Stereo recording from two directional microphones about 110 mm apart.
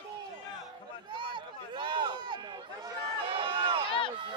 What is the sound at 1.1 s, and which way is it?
Run, 45° right (ahead or behind).